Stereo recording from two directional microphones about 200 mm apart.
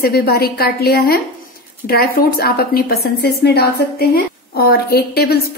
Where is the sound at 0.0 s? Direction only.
50° left (ahead or behind).